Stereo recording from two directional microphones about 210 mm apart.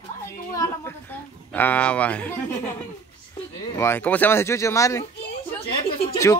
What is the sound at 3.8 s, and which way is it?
A man's voice, 10° left (ahead or behind).